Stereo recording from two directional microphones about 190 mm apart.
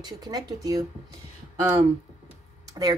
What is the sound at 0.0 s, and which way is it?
Speech, 20° right (ahead or behind).